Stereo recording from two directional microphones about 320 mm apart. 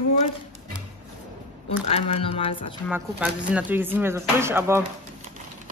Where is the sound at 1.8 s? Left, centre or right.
Centre.